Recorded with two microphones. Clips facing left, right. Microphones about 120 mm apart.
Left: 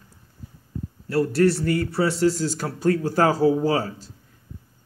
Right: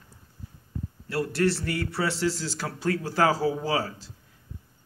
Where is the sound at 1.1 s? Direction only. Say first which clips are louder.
Left 6 dB; 40° left (ahead or behind).